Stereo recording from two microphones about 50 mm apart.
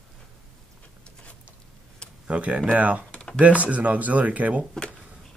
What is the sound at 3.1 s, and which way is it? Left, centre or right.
Typing, left.